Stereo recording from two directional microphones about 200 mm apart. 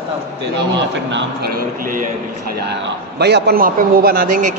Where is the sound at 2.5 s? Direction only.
55° right (ahead or behind).